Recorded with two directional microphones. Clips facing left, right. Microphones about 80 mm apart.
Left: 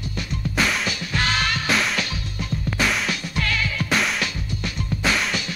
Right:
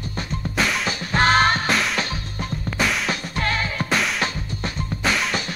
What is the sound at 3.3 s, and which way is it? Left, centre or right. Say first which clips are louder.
Music: right 1 dB; right.